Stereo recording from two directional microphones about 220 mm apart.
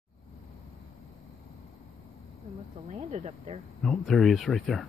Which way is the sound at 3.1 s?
30° right (ahead or behind).